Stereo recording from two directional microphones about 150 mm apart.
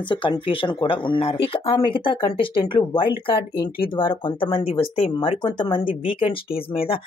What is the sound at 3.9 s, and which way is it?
Speech, 35° left (ahead or behind).